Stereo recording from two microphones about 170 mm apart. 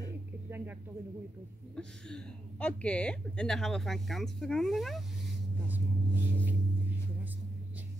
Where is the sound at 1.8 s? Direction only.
5° left (ahead or behind).